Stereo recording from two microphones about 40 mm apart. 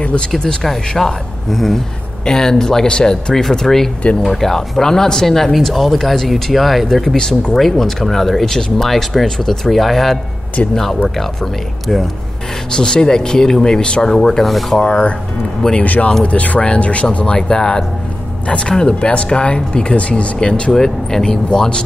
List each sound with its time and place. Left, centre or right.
0.4 s speech: left
0.7 s speech: centre
2.2 s speech: centre
7.2 s speech: centre
7.5 s speech: centre
12.7 s speech: centre
14.4 s speech: centre
14.8 s speech: left
15.8 s speech: left
17.4 s speech: centre
20.7 s speech: centre